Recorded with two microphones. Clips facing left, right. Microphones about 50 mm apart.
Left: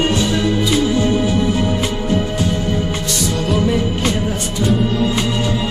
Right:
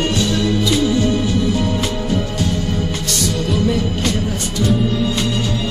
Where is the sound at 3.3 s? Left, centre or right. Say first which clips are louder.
Left 2 dB; centre.